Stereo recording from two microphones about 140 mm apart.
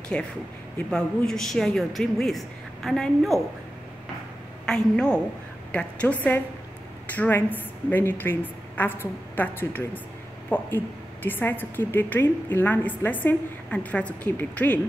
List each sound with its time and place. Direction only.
0.1 s a woman's voice: 10° left (ahead or behind)
4.6 s a woman's voice: 5° left (ahead or behind)